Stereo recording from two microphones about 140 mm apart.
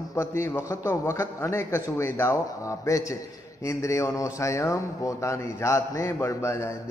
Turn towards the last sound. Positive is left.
turn(degrees=20)  # may be behind; listen again after turning